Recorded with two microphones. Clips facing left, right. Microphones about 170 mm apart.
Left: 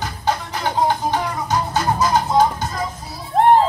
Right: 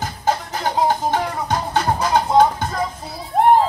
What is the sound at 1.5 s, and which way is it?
Music, 60° right (ahead or behind).